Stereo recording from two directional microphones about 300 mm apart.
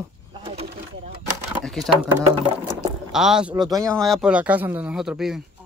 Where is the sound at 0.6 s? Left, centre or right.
Right.